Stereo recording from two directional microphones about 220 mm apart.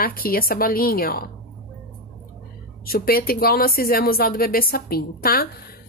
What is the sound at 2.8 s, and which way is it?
A woman's voice, 40° left (ahead or behind).